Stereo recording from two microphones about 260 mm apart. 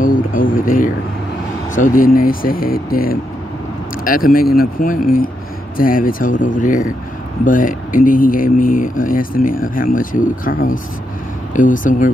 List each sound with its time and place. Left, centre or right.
0.0 s a sound: left
1.8 s speech: left
11.5 s speech: left